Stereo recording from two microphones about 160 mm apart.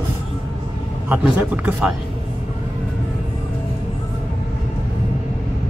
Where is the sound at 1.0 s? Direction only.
10° right (ahead or behind).